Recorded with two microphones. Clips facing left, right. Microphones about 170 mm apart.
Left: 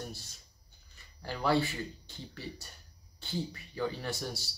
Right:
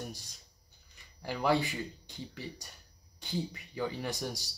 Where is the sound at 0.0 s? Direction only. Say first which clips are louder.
Even; 15° right (ahead or behind).